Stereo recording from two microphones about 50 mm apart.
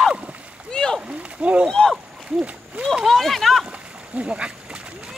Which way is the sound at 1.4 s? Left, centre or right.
Right.